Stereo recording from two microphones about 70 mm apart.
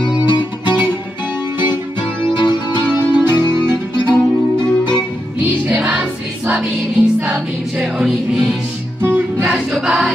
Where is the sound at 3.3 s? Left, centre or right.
Right.